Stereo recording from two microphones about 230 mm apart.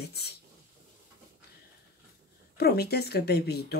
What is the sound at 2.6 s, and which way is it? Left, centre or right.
Speech, left.